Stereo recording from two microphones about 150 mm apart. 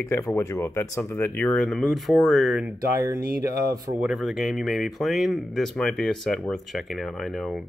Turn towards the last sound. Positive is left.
turn(degrees=0)  # may be behind; listen again after turning